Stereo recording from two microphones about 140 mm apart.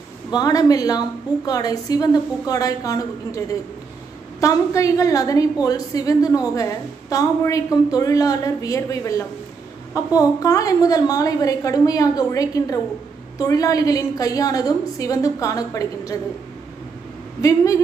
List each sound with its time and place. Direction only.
0.3 s a woman's voice: 25° left (ahead or behind)
17.4 s a woman's voice: 25° left (ahead or behind)